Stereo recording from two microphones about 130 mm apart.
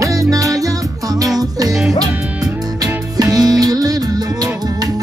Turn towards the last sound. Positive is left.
turn(degrees=-30)  # may be behind; listen again after turning